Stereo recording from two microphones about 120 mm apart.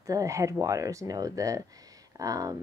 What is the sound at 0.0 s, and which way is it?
A woman's voice, 25° right (ahead or behind).